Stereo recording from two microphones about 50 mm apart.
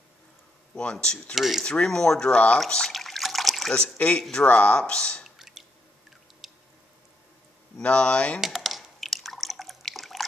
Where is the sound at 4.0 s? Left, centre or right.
Left.